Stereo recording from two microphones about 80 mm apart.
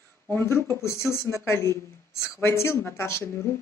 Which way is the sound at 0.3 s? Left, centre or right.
Left.